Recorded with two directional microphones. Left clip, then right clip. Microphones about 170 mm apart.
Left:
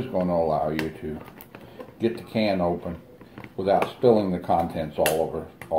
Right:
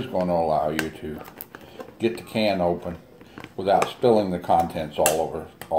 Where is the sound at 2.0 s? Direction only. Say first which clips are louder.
Right 2 dB; 10° right (ahead or behind).